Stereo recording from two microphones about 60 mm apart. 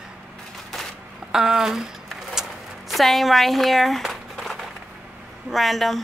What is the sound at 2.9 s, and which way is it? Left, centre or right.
A woman's voice, centre.